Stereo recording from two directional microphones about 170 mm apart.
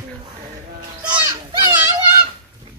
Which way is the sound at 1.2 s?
20° right (ahead or behind).